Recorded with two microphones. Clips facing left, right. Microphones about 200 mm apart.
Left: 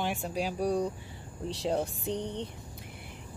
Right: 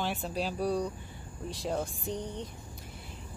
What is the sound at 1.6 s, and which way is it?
Speech, 30° left (ahead or behind).